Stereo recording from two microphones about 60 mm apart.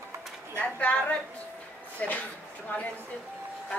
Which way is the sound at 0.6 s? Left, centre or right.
Centre.